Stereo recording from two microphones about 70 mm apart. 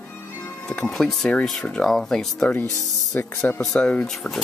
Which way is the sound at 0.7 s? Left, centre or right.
Centre.